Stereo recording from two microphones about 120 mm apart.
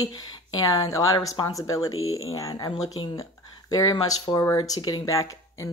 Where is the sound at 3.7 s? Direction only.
30° left (ahead or behind).